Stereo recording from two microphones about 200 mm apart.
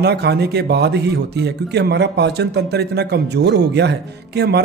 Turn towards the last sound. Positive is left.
turn(degrees=-55)  # may be behind; listen again after turning